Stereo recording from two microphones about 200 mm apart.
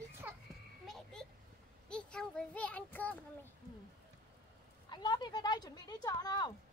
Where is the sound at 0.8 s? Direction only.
Centre (ahead or behind).